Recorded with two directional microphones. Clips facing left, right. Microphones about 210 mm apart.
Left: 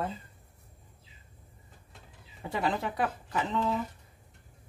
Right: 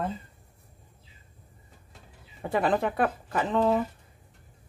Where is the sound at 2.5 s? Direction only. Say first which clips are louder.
Right 6 dB; 55° right (ahead or behind).